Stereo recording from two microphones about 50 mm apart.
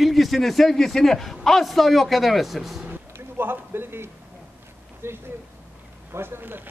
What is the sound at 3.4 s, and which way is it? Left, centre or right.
Speech, right.